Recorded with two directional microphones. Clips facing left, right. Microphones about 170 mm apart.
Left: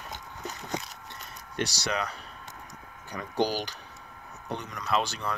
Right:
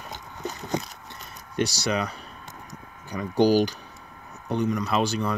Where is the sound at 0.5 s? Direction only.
30° right (ahead or behind).